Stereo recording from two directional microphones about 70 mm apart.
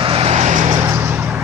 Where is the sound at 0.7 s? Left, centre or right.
Right.